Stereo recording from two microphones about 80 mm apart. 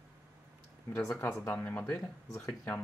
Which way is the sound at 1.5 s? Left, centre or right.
Left.